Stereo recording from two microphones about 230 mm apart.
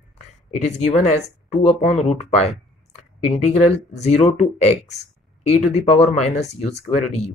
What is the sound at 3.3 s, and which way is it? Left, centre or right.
Speech, left.